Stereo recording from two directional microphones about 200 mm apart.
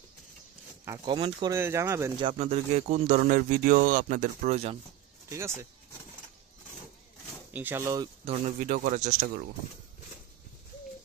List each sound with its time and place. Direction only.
0.8 s speech: 25° right (ahead or behind)
1.5 s speech: 15° right (ahead or behind)
2.2 s speech: 35° right (ahead or behind)
7.5 s speech: 10° right (ahead or behind)
8.3 s speech: 35° right (ahead or behind)